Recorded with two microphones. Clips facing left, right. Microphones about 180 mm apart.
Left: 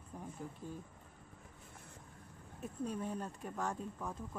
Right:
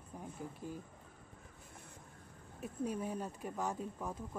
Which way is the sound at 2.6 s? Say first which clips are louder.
Right 1 dB; 10° right (ahead or behind).